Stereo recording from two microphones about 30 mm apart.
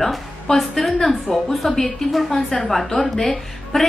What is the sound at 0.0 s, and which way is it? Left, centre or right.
A woman's voice, centre.